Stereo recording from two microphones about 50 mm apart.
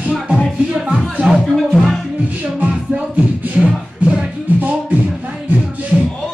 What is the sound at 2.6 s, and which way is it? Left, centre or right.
Music, right.